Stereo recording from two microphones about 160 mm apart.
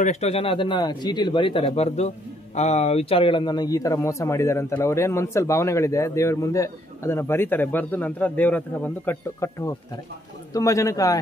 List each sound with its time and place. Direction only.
0.0 s speech: 45° left (ahead or behind); by 11.1 s 20° left (ahead or behind)